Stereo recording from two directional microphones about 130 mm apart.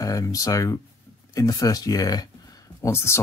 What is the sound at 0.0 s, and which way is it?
Speech, 25° left (ahead or behind).